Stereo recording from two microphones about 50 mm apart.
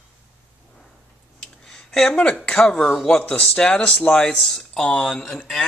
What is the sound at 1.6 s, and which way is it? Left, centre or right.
Speech, centre.